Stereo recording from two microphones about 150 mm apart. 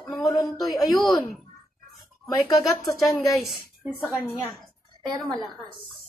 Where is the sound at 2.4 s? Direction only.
20° left (ahead or behind).